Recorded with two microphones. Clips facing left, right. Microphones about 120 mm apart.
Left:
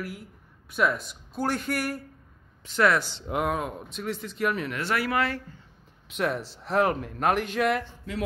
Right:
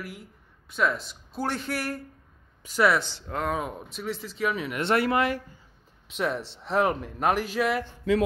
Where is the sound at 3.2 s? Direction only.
15° left (ahead or behind).